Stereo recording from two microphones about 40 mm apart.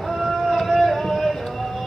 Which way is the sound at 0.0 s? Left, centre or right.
Centre.